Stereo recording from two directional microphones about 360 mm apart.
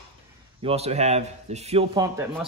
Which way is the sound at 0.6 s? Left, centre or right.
Centre.